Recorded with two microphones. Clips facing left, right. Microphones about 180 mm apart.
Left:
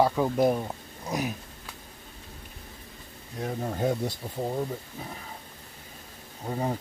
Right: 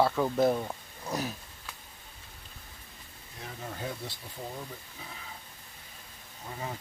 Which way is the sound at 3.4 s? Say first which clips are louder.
Left 10 dB; 45° left (ahead or behind).